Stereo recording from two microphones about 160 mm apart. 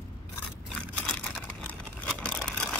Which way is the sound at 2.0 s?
5° left (ahead or behind).